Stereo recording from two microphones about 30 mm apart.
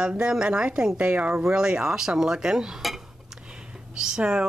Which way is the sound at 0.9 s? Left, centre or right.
Right.